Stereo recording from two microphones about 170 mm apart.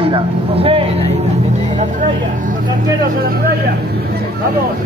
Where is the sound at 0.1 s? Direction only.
35° right (ahead or behind).